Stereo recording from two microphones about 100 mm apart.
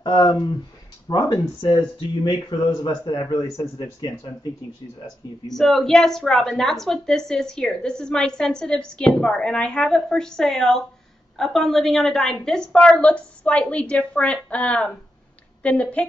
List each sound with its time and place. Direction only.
0.0 s speech: 50° left (ahead or behind)
5.5 s a woman's voice: 5° left (ahead or behind)